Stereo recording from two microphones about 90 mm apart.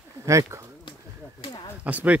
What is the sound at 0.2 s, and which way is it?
Speech, 35° right (ahead or behind).